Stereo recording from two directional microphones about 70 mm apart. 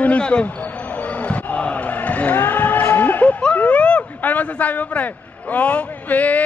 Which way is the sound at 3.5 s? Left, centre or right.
Centre.